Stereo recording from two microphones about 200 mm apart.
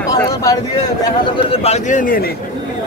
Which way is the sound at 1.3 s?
30° left (ahead or behind).